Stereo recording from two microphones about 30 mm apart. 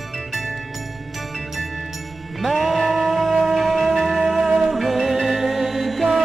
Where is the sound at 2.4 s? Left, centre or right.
Centre.